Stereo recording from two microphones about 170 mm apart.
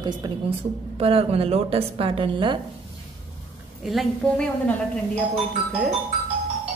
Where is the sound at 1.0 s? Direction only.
35° right (ahead or behind).